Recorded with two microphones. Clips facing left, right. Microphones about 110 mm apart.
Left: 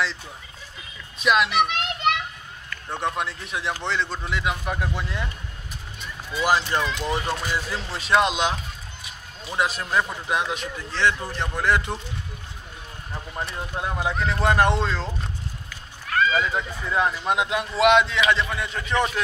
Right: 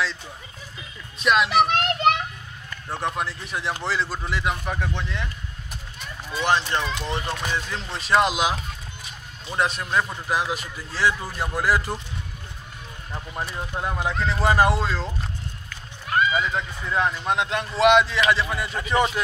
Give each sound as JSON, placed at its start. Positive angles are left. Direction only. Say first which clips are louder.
{"t": 1.2, "sound": "a man's voice", "louder": "right 1 dB", "side_deg": 0}
{"t": 1.7, "sound": "children playing", "louder": "right 4 dB", "side_deg": -40}
{"t": 2.9, "sound": "a man's voice", "louder": "even", "side_deg": 0}
{"t": 6.4, "sound": "a man's voice", "louder": "left 1 dB", "side_deg": 5}
{"t": 13.1, "sound": "a man's voice", "louder": "even", "side_deg": -5}
{"t": 16.1, "sound": "horse", "louder": "even", "side_deg": -15}
{"t": 16.4, "sound": "a man's voice", "louder": "left 1 dB", "side_deg": 5}